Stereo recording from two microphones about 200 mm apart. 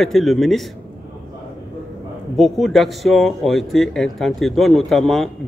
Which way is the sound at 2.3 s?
Centre (ahead or behind).